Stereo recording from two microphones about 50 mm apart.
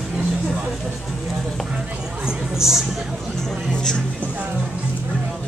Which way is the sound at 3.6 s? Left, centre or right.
Centre.